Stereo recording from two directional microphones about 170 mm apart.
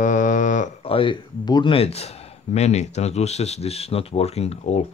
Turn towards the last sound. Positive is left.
turn(degrees=40)  # may be behind; listen again after turning